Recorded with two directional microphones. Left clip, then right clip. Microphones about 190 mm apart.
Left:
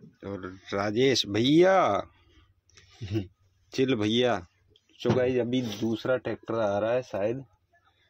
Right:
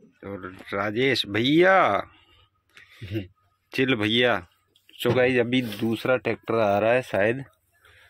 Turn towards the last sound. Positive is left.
turn(degrees=-15)  # may be behind; listen again after turning